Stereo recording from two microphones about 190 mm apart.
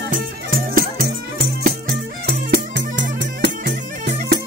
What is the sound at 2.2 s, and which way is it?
Music, 65° right (ahead or behind).